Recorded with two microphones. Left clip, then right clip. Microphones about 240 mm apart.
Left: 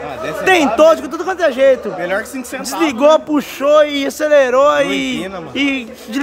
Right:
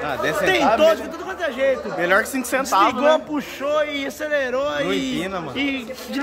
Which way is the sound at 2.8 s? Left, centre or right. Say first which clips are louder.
Left 9 dB; left.